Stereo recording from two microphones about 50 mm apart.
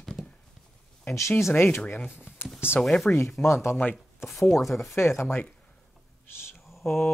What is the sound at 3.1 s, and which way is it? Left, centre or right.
Speech, left.